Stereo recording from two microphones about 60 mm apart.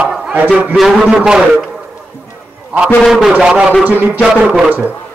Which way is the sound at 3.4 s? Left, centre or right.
Centre.